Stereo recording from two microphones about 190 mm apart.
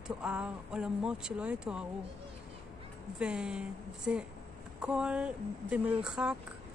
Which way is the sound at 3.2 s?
5° right (ahead or behind).